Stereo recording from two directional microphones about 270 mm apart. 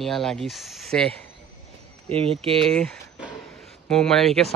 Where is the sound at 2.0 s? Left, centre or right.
Right.